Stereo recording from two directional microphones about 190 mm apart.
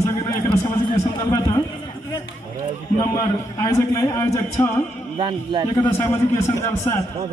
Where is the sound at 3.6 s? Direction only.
15° left (ahead or behind).